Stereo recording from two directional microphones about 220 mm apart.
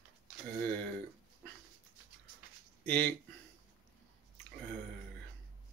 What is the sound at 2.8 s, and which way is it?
Speech, 5° left (ahead or behind).